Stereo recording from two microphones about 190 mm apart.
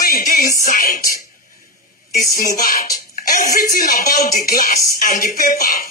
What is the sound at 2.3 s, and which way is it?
Speech, 50° left (ahead or behind).